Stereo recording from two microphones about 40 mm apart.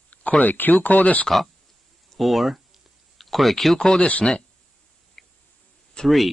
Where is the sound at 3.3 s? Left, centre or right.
Centre.